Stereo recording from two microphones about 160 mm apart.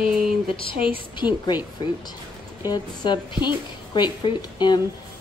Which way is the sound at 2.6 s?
30° left (ahead or behind).